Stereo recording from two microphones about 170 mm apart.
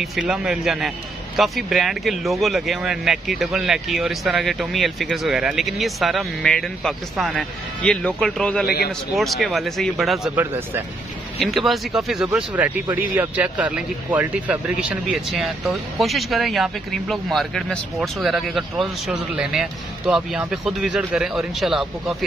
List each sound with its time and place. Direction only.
0.0 s speech: centre (ahead or behind)
8.6 s a man's voice: 65° left (ahead or behind)
9.1 s speech: centre (ahead or behind)
10.3 s speech: 10° right (ahead or behind)
11.3 s speech: centre (ahead or behind)